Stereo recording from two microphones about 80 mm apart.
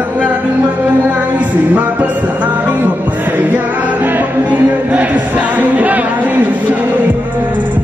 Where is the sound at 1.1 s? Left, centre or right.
Right.